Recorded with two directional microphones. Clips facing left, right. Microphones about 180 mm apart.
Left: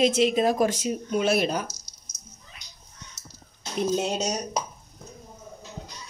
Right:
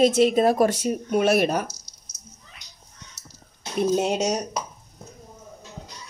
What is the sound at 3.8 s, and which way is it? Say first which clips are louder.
Speech: right 4 dB; 55° right (ahead or behind).